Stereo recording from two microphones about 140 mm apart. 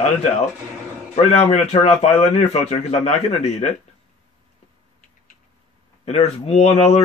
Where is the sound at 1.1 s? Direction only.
50° left (ahead or behind).